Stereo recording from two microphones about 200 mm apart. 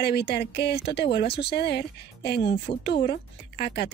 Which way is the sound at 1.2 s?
30° left (ahead or behind).